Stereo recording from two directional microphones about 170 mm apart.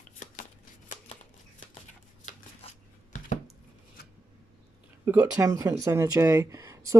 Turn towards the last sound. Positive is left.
turn(degrees=-20)  # may be behind; listen again after turning